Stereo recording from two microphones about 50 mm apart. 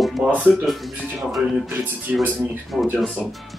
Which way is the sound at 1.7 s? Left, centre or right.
Right.